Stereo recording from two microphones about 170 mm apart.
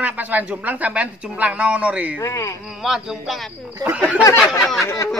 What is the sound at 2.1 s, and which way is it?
Speech, 15° left (ahead or behind).